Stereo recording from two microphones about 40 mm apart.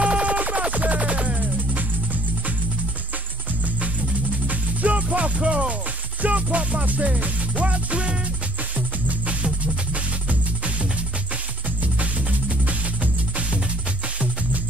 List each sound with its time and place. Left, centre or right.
0.0 s music: right
4.5 s music: right
11.8 s music: right